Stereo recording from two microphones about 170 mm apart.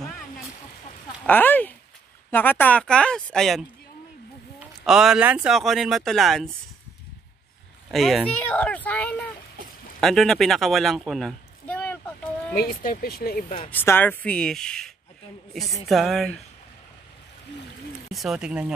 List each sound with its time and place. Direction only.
1.2 s speech: 10° left (ahead or behind)
7.9 s speech: centre (ahead or behind)
12.5 s speech: 60° left (ahead or behind)
13.7 s speech: 10° left (ahead or behind)
18.1 s speech: 5° right (ahead or behind)